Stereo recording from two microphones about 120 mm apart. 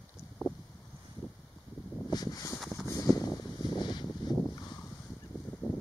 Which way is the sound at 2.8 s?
30° left (ahead or behind).